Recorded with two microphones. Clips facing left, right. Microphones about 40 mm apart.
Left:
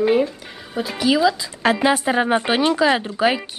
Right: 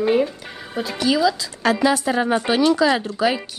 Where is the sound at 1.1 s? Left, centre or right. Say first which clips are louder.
Left 2 dB; centre.